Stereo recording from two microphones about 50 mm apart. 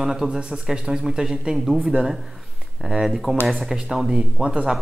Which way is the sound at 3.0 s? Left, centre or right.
Centre.